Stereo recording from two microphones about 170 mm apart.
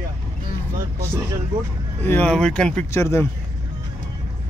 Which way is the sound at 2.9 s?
15° left (ahead or behind).